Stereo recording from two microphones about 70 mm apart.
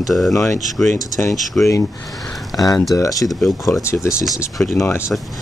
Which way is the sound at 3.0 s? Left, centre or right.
Left.